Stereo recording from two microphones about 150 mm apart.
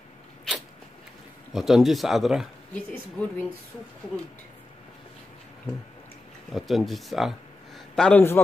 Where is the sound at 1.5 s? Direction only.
Centre (ahead or behind).